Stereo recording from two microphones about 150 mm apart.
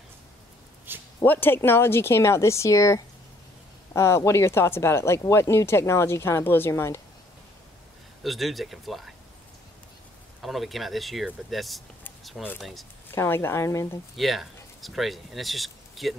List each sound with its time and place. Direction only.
0.9 s a sound: 15° right (ahead or behind)
1.2 s speech: 15° left (ahead or behind)
8.2 s speech: centre (ahead or behind)
10.4 s speech: centre (ahead or behind)
13.1 s speech: 15° left (ahead or behind)
14.1 s speech: centre (ahead or behind)